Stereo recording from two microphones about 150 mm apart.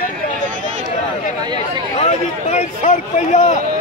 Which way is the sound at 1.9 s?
50° left (ahead or behind).